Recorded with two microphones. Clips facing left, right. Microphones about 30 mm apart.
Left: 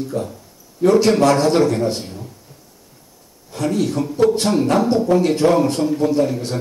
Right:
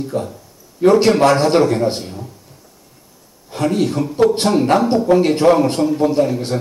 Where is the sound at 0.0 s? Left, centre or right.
Centre.